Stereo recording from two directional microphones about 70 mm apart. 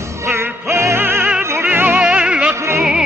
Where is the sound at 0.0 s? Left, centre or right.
Right.